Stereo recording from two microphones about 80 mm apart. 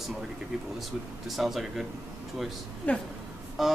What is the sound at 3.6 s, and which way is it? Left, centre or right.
Speech, centre.